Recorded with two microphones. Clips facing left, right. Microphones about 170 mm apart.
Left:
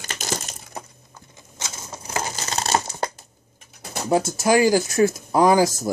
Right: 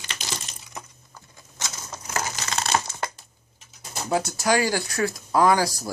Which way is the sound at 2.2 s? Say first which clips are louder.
Left 2 dB; 30° left (ahead or behind).